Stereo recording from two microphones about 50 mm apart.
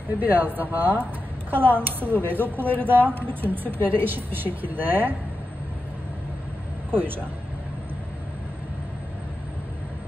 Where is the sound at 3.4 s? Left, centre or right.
Right.